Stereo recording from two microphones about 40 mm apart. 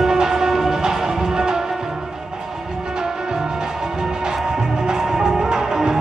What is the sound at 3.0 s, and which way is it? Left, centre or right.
Music, centre.